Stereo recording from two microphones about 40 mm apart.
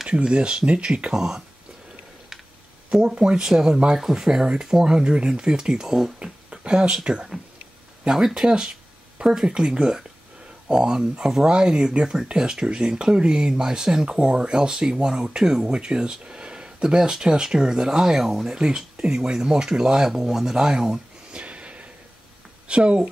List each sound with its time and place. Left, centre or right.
0.0 s speech: centre
1.1 s speech: centre
2.9 s speech: centre
5.9 s speech: centre
6.6 s speech: right
8.4 s speech: centre
21.3 s a sound: right
22.7 s speech: right